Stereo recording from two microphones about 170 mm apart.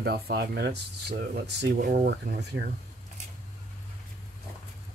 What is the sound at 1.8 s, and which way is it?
Speech, 55° right (ahead or behind).